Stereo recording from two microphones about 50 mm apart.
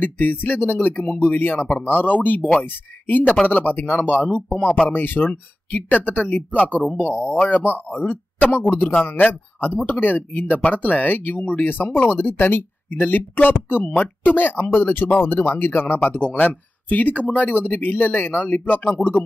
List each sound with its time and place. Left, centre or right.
0.0 s speech: left
1.0 s speech: left
4.5 s speech: centre
4.9 s speech: left
6.2 s speech: left
13.9 s speech: left
14.3 s speech: left